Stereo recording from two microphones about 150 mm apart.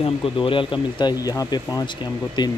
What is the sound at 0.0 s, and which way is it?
Speech, 35° left (ahead or behind).